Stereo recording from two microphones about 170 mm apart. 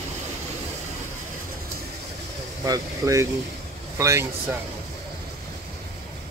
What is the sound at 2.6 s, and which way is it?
Speech, 20° right (ahead or behind).